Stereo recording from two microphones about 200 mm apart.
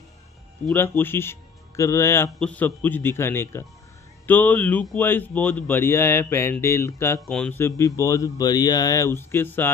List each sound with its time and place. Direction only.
0.7 s a man's voice: 10° left (ahead or behind)